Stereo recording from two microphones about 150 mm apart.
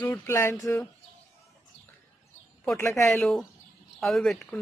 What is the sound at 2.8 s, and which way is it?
Speech, 20° left (ahead or behind).